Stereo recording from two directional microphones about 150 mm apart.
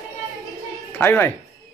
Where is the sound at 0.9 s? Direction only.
15° left (ahead or behind).